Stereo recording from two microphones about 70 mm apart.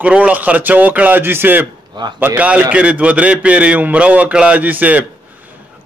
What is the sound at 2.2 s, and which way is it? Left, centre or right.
A man's voice, right.